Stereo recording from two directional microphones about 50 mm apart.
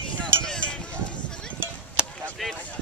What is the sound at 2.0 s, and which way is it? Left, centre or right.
Chop, centre.